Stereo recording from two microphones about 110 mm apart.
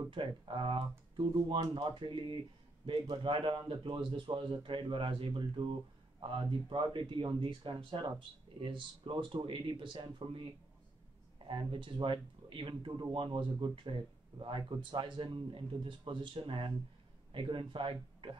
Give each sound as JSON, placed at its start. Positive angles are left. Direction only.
{"t": 0.1, "sound": "a man's voice", "side_deg": -50}
{"t": 6.1, "sound": "a sound", "side_deg": -50}
{"t": 6.7, "sound": "a man's voice", "side_deg": -50}